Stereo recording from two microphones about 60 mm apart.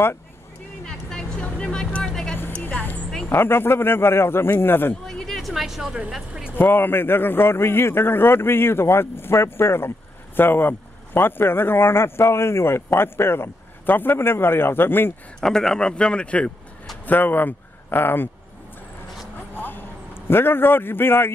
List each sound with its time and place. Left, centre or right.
1.4 s vehicle: centre
2.3 s vehicle: left
2.7 s music: left
3.3 s a man's voice: left
5.0 s a sound: centre
6.1 s speech: centre
6.5 s a man's voice: left
15.4 s speech: centre
17.0 s speech: left
19.6 s a sound: left